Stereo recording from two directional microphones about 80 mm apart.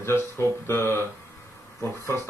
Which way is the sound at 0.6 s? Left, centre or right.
Left.